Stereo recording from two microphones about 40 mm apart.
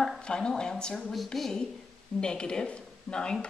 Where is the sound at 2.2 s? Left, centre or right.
Left.